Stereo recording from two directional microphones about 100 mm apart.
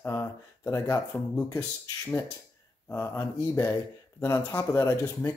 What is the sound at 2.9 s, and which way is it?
Speech, 25° left (ahead or behind).